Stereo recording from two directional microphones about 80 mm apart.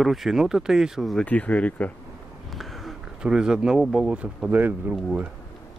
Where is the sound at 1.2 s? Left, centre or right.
Centre.